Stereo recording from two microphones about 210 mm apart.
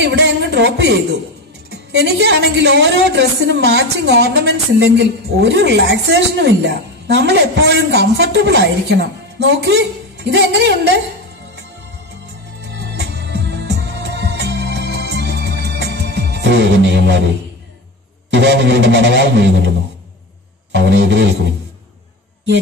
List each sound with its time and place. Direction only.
0.0 s music: 55° right (ahead or behind)
1.7 s a woman's voice: 55° right (ahead or behind)
12.6 s music: 55° right (ahead or behind)
18.3 s a woman's voice: 55° right (ahead or behind)
20.7 s a woman's voice: 55° right (ahead or behind)